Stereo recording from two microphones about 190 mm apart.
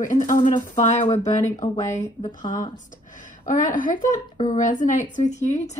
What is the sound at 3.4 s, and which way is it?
Speech, 40° left (ahead or behind).